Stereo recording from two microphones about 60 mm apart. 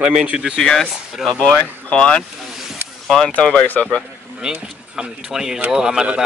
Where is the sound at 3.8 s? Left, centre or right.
Centre.